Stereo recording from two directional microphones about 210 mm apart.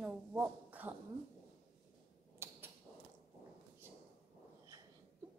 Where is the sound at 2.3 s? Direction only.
10° right (ahead or behind).